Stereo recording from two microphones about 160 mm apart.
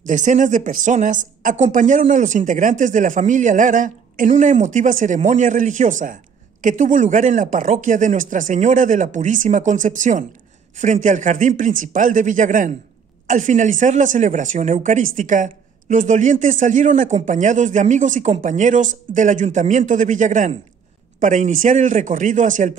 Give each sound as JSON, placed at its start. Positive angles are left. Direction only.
{"t": 0.0, "sound": "speech", "side_deg": -50}